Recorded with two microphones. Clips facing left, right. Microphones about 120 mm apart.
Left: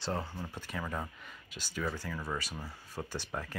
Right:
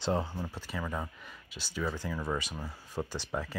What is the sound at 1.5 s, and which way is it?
Speech, 45° left (ahead or behind).